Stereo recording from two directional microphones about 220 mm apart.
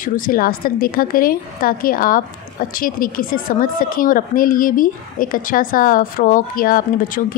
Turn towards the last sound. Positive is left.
turn(degrees=40)  # may be behind; listen again after turning